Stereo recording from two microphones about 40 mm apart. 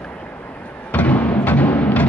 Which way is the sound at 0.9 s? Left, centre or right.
Left.